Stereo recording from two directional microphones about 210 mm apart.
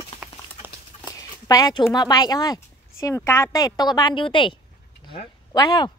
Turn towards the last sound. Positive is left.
turn(degrees=20)  # may be behind; listen again after turning